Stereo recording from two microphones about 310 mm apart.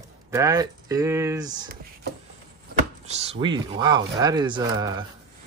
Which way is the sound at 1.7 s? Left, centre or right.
Right.